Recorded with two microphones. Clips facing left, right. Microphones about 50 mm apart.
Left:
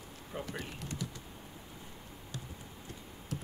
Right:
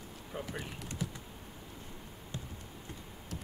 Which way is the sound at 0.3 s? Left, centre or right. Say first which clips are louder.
Even; centre.